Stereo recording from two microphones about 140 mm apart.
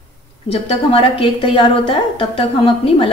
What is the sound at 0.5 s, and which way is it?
A woman's voice, 45° left (ahead or behind).